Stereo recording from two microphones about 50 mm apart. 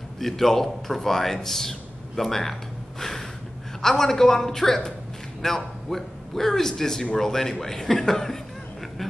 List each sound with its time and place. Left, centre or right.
0.2 s a man's voice: centre
3.0 s a sound: centre
3.8 s a man's voice: centre